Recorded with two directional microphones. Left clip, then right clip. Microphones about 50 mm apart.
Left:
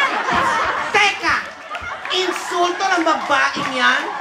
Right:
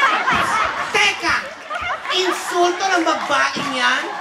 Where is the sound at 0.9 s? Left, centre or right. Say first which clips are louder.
Left 1 dB; left.